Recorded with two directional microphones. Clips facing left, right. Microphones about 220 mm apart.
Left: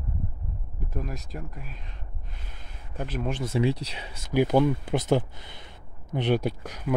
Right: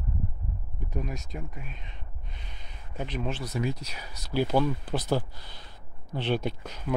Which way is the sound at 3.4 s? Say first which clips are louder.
Left 6 dB; 30° left (ahead or behind).